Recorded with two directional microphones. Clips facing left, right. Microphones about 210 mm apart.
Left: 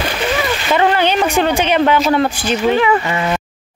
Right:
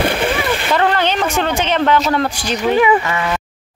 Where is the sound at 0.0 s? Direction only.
55° right (ahead or behind).